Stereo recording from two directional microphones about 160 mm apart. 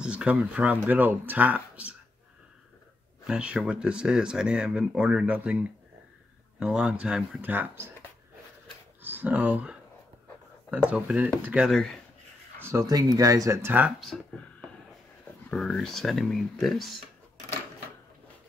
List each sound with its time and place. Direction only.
0.0 s speech: 5° right (ahead or behind)
3.3 s speech: 5° right (ahead or behind)
9.0 s speech: 10° right (ahead or behind)
12.6 s speech: 20° right (ahead or behind); by 14.1 s 5° right (ahead or behind)
15.5 s speech: 5° left (ahead or behind)